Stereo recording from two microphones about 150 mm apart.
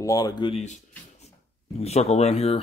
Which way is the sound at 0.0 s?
25° left (ahead or behind).